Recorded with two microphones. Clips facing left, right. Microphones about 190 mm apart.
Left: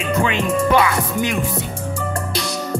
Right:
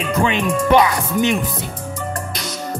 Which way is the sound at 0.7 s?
25° right (ahead or behind).